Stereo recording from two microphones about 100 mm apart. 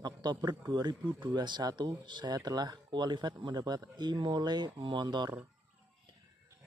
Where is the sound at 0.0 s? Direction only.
45° right (ahead or behind).